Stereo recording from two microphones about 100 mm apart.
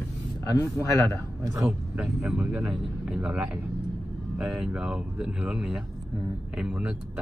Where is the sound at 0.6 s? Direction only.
25° left (ahead or behind).